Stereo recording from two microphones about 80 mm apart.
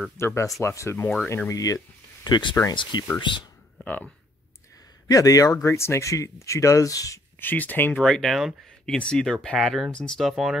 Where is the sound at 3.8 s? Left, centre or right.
Centre.